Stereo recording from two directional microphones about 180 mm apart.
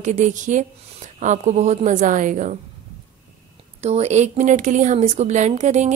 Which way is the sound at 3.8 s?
35° right (ahead or behind).